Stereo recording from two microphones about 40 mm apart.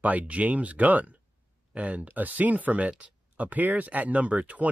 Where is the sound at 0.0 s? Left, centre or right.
Right.